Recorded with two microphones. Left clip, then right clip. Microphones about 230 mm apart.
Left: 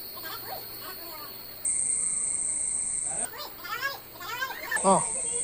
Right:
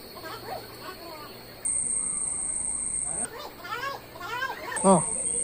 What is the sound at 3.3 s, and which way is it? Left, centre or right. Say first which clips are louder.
Children playing: even; left.